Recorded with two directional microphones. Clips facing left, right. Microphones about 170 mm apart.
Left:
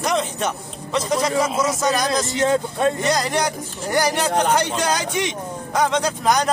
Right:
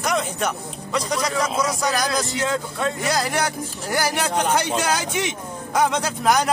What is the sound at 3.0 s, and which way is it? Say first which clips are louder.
Speech: left 2 dB; 5° right (ahead or behind).